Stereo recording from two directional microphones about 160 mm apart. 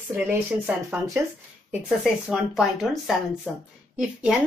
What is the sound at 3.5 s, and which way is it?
Speech, 10° left (ahead or behind).